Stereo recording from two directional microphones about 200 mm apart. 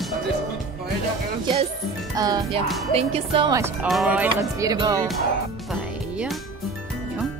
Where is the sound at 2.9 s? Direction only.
30° right (ahead or behind).